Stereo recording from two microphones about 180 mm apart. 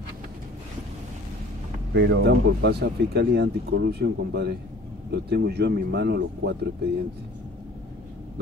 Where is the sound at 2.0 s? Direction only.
75° right (ahead or behind).